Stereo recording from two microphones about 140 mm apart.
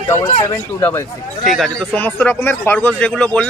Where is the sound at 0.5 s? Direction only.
20° left (ahead or behind).